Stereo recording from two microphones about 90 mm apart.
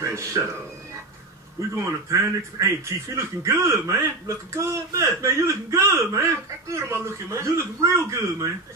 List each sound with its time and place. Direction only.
0.0 s speech: 35° right (ahead or behind)
1.8 s speech: 35° right (ahead or behind)